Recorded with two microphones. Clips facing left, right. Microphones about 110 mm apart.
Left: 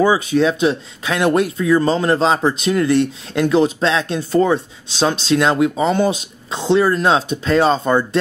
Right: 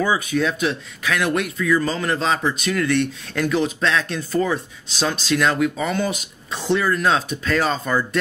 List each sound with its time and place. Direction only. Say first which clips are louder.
0.0 s speech: left 6 dB; 25° left (ahead or behind)